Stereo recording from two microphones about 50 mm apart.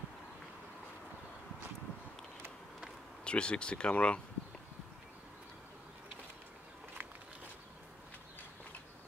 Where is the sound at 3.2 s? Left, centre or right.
Centre.